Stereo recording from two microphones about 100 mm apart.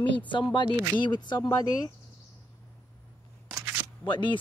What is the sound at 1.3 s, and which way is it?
Speech, 30° left (ahead or behind).